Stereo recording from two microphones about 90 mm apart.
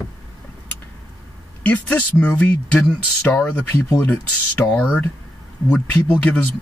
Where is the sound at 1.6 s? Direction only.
15° left (ahead or behind).